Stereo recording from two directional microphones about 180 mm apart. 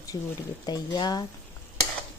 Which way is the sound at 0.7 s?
20° left (ahead or behind).